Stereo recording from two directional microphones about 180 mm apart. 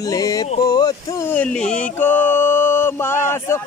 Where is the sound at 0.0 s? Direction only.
20° left (ahead or behind).